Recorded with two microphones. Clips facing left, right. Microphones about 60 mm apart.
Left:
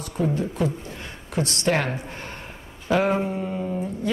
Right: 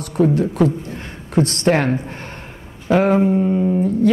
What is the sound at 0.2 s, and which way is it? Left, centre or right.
Speech, right.